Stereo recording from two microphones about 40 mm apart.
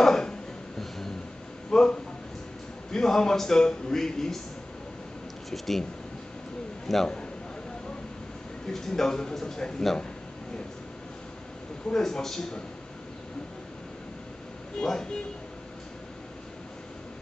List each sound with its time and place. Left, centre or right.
0.0 s a sound: centre
1.7 s a man's voice: centre
5.5 s speech: centre
6.9 s speech: centre
8.7 s a man's voice: centre
11.9 s a man's voice: centre
14.8 s a man's voice: centre